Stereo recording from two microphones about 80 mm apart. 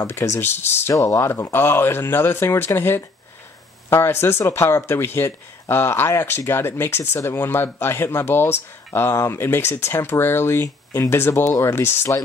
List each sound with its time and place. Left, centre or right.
0.4 s speech: left